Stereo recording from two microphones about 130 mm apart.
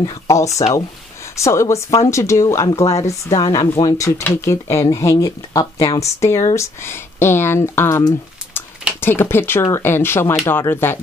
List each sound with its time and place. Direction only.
0.0 s speech: 30° left (ahead or behind)
9.0 s speech: 15° left (ahead or behind)